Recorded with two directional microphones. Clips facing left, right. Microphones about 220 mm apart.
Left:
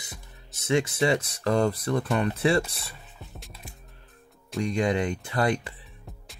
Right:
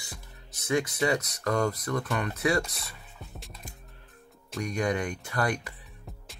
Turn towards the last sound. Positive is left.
turn(degrees=25)  # may be behind; listen again after turning